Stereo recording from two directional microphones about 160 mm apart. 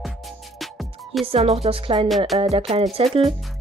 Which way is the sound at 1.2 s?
40° right (ahead or behind).